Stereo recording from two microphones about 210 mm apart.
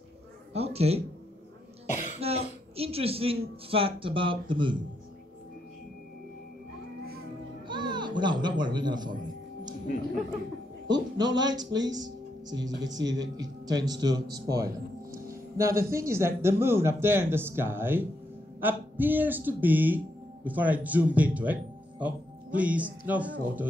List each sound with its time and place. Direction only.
0.5 s a sound: 30° right (ahead or behind)
1.9 s cough: 35° left (ahead or behind)
2.1 s cough: 30° right (ahead or behind)
2.7 s speech: 30° right (ahead or behind)
7.6 s music: 20° right (ahead or behind)
8.2 s speech: 20° right (ahead or behind)
10.9 s a man's voice: 20° right (ahead or behind)